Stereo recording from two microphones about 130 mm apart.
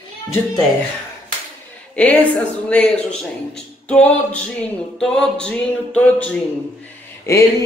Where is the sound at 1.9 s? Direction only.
15° left (ahead or behind).